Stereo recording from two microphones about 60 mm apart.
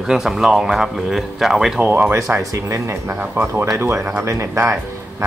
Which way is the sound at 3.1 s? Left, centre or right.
Right.